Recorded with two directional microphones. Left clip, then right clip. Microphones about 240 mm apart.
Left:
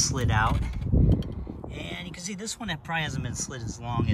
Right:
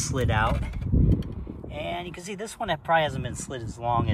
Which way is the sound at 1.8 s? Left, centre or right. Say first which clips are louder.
Right 6 dB; centre.